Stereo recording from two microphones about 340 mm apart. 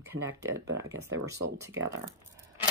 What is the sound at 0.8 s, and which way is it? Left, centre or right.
Speech, centre.